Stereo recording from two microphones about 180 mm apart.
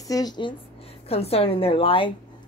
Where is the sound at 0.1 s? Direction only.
20° left (ahead or behind).